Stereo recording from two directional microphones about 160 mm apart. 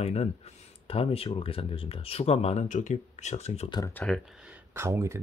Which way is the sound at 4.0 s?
5° left (ahead or behind).